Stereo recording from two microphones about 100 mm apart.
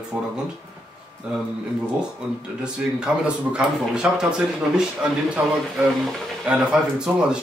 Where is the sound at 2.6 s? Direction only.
10° right (ahead or behind).